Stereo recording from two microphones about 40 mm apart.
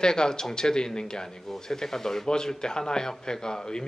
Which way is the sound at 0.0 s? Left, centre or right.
Centre.